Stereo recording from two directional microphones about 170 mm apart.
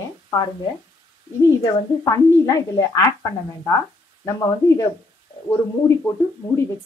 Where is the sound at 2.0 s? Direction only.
20° left (ahead or behind).